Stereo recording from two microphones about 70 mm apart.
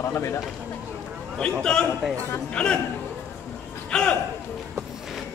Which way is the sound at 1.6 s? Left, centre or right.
Centre.